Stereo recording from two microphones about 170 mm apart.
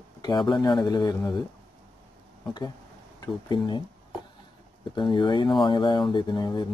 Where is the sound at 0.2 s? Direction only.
25° left (ahead or behind).